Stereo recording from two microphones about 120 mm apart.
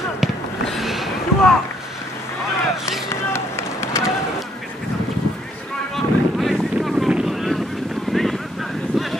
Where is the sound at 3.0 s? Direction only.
20° left (ahead or behind).